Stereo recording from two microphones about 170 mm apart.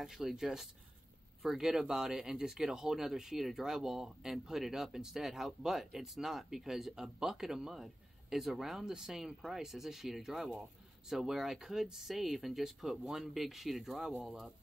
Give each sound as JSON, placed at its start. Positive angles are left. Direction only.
{"t": 0.0, "sound": "speech", "side_deg": 0}